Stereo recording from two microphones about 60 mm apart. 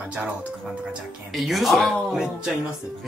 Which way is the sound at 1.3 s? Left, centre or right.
Centre.